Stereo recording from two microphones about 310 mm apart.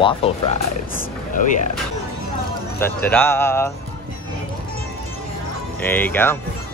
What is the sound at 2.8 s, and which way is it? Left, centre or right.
Speech, centre.